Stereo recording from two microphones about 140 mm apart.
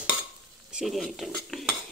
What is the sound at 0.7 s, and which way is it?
Speech, centre (ahead or behind).